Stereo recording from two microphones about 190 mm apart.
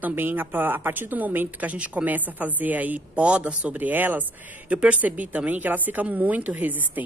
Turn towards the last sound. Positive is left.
turn(degrees=-10)  # may be behind; listen again after turning